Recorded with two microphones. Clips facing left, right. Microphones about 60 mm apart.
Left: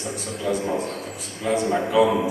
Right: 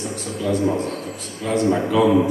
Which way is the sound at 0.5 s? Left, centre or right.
Centre.